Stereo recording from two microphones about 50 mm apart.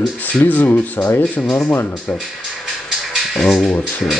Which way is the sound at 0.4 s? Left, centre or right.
Left.